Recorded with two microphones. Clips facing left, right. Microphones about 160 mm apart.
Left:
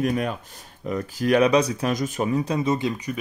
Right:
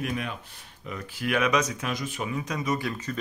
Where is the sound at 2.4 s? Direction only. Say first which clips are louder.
Left 6 dB; 30° left (ahead or behind).